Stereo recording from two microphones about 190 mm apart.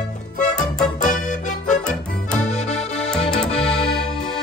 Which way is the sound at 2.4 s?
35° left (ahead or behind).